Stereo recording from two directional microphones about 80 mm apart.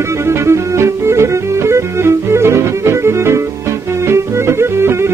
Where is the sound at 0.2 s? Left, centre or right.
Right.